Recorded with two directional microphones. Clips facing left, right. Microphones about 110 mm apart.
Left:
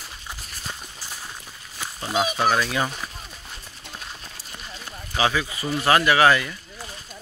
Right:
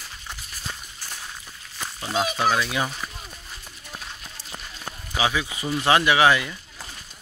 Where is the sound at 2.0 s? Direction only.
10° left (ahead or behind).